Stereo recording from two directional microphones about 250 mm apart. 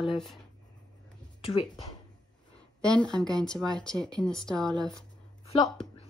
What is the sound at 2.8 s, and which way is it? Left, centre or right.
Speech, centre.